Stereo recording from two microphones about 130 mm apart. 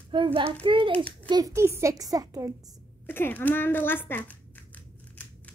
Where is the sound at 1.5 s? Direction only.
20° right (ahead or behind).